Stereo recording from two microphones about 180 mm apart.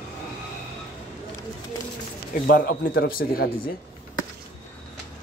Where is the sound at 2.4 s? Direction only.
60° left (ahead or behind).